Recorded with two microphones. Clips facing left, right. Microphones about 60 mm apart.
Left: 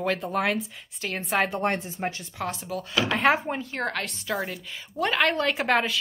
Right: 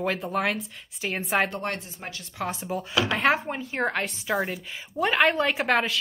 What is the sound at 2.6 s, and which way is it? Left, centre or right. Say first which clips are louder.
Speech: right 2 dB; right.